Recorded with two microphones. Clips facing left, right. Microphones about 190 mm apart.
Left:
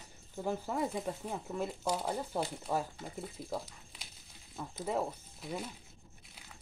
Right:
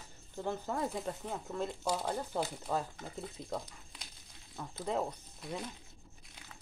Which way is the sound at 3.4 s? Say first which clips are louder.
Left 1 dB; 5° left (ahead or behind).